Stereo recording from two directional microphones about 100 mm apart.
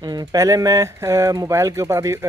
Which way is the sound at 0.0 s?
40° right (ahead or behind).